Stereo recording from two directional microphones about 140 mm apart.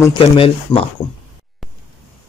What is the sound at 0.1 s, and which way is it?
Speech, 40° left (ahead or behind).